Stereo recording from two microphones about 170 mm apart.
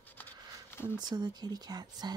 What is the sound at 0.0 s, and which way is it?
Patter, 10° left (ahead or behind).